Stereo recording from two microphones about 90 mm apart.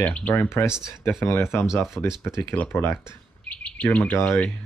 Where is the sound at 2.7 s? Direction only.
30° left (ahead or behind).